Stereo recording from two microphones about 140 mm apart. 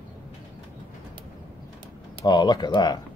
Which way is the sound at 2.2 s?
30° left (ahead or behind).